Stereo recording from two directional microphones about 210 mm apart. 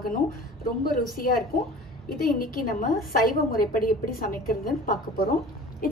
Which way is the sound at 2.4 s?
45° left (ahead or behind).